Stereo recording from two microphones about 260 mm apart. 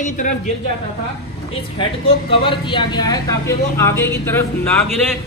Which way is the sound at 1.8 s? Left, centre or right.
Centre.